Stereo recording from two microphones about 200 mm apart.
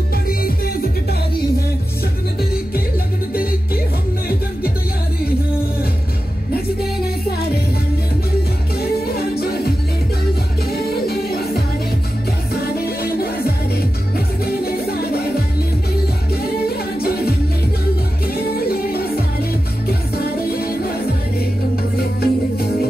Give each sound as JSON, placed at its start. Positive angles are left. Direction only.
{"t": 8.7, "sound": "music", "side_deg": 50}
{"t": 12.7, "sound": "music", "side_deg": 50}
{"t": 16.6, "sound": "singing", "side_deg": 50}
{"t": 18.2, "sound": "music", "side_deg": 50}
{"t": 20.5, "sound": "music", "side_deg": 50}
{"t": 21.9, "sound": "music", "side_deg": 50}